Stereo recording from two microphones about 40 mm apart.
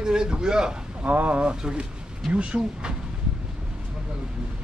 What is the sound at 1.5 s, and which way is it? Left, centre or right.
Speech, right.